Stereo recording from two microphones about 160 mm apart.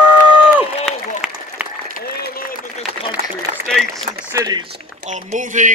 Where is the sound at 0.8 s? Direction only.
5° right (ahead or behind).